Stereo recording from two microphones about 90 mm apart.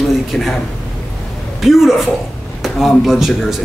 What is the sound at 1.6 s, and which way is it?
Speech, 5° right (ahead or behind).